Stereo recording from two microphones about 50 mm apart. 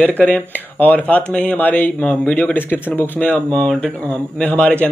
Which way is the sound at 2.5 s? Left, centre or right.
Left.